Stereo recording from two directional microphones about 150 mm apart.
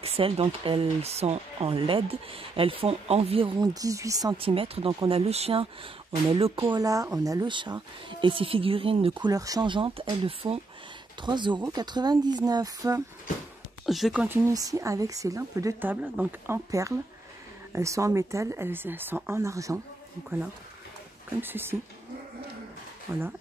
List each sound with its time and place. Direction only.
0.0 s speech: 40° right (ahead or behind); by 4.4 s 25° right (ahead or behind)
4.4 s speech: 40° right (ahead or behind)
6.7 s speech: 25° right (ahead or behind)
9.2 s a woman's voice: 25° right (ahead or behind)
13.8 s speech: centre (ahead or behind)
14.5 s a woman's voice: 25° right (ahead or behind)
21.4 s speech: 15° right (ahead or behind)